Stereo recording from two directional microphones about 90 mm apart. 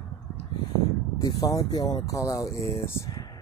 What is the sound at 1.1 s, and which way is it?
Speech, 45° left (ahead or behind).